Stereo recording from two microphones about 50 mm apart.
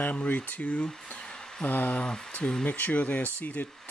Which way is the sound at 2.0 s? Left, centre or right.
Centre.